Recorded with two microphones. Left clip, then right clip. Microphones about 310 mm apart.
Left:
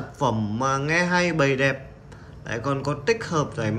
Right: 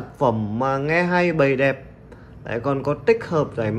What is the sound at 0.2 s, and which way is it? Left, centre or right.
A man's voice, centre.